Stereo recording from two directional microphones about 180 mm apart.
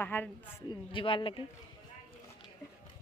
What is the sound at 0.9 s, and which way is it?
Speech, 30° left (ahead or behind).